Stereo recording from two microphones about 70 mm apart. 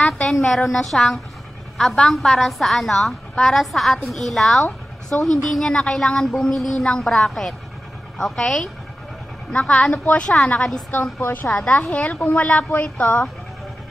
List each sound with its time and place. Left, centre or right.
0.3 s a woman's voice: centre
10.9 s a woman's voice: left
11.4 s speech: centre